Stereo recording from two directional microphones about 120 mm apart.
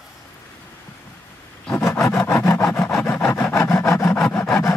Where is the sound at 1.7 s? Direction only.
20° left (ahead or behind).